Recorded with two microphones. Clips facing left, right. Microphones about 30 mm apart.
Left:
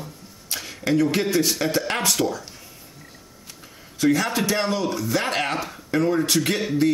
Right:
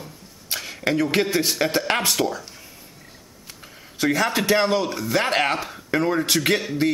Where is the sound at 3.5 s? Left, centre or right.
Centre.